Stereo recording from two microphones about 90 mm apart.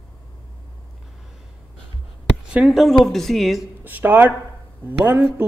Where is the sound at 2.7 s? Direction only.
Centre (ahead or behind).